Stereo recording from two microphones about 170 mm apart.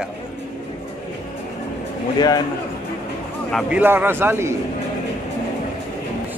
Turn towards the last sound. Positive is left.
turn(degrees=-15)  # may be behind; listen again after turning